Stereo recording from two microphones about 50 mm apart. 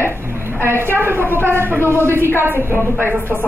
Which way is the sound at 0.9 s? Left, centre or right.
Right.